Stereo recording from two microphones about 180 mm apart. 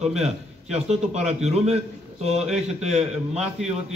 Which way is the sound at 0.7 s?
35° right (ahead or behind).